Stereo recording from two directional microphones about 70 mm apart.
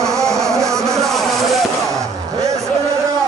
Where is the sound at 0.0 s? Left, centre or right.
Centre.